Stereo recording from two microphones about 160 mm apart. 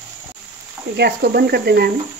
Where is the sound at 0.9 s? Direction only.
80° right.